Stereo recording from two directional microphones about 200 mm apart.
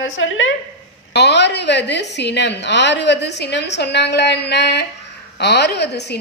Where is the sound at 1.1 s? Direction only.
55° left (ahead or behind).